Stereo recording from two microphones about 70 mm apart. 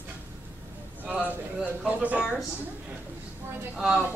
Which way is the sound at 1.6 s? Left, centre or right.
Right.